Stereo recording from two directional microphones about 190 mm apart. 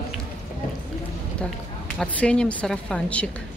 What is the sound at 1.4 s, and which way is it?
A woman's voice, 5° left (ahead or behind).